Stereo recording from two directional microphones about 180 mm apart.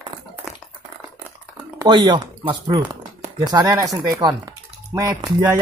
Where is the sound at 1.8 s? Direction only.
20° right (ahead or behind).